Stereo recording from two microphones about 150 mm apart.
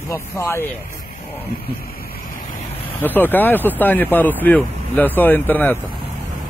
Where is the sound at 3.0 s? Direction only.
15° left (ahead or behind).